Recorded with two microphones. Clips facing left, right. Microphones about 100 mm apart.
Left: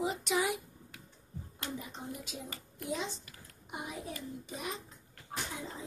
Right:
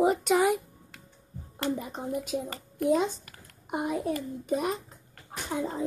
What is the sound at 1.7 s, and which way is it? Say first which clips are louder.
A child's voice: right 9 dB; 50° right (ahead or behind).